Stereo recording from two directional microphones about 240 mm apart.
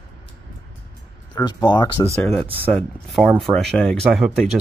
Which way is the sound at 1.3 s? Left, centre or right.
Centre.